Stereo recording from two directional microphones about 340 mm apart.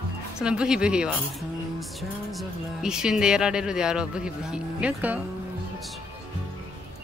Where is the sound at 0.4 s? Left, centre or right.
Centre.